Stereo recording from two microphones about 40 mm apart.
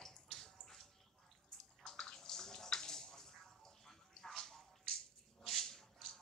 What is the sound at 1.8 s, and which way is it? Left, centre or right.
Bathtub, centre.